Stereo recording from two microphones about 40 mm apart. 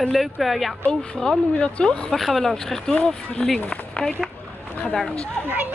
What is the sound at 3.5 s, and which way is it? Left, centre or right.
Speech, left.